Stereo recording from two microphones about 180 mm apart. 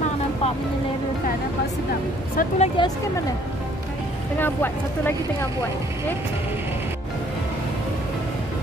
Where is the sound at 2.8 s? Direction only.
25° left (ahead or behind).